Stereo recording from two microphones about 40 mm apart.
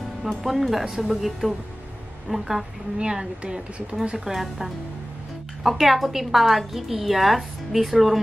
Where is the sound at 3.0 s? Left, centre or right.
Centre.